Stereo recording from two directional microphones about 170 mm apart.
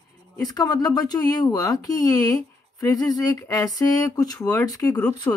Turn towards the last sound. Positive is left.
turn(degrees=10)  # may be behind; listen again after turning